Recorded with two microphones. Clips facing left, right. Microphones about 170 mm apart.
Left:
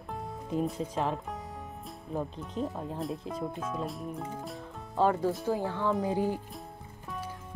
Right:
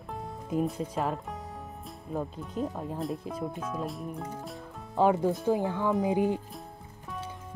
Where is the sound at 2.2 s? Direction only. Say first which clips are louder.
Right 1 dB; centre (ahead or behind).